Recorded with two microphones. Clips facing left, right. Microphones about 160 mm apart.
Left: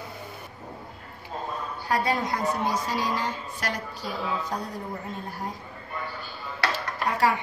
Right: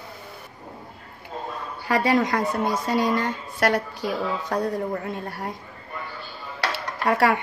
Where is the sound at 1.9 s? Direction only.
90° right.